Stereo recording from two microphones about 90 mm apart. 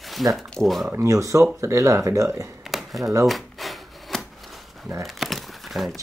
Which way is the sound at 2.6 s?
Centre (ahead or behind).